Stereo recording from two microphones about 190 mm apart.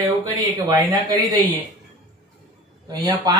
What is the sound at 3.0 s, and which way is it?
Speech, 20° right (ahead or behind).